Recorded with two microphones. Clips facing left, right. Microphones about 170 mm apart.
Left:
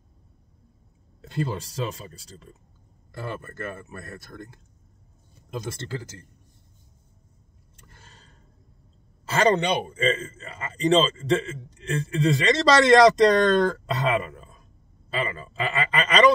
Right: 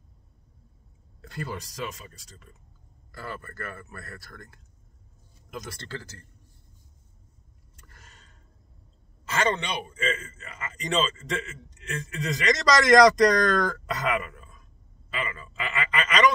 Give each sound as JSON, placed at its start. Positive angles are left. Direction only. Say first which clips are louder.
{"t": 1.2, "sound": "speech", "louder": "left 6 dB", "side_deg": 25}
{"t": 7.8, "sound": "a sound", "louder": "left 3 dB", "side_deg": 25}
{"t": 9.2, "sound": "a man's voice", "louder": "left 6 dB", "side_deg": 35}